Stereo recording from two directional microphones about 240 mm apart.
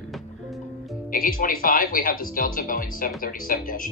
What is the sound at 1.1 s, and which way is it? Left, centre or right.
Speech, left.